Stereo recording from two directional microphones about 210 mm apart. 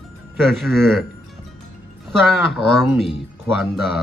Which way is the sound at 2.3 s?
Centre (ahead or behind).